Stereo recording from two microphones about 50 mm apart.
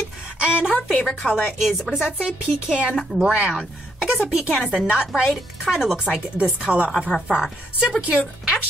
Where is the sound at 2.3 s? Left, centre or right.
Centre.